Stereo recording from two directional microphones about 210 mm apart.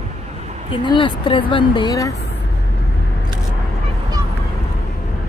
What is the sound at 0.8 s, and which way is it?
Speech, 25° left (ahead or behind).